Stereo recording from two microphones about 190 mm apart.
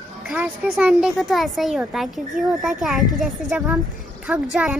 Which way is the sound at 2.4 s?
45° right (ahead or behind).